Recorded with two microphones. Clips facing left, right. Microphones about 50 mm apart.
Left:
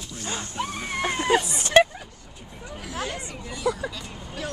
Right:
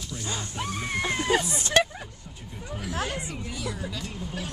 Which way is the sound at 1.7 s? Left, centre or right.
Left.